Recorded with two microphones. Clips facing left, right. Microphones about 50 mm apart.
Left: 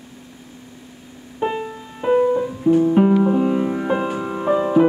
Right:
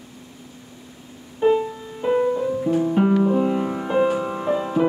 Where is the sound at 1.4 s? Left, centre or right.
Centre.